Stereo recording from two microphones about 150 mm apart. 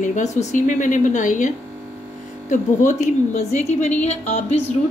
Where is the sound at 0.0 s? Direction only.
50° left (ahead or behind).